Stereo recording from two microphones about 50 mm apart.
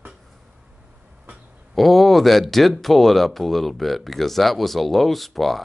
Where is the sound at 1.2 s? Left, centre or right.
Right.